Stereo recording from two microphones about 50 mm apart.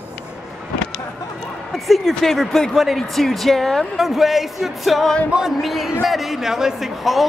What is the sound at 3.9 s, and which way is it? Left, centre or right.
Speech, centre.